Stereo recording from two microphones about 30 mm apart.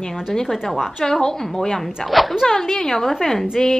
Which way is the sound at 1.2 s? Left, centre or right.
Left.